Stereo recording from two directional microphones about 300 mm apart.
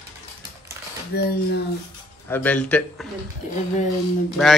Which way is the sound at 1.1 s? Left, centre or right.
Left.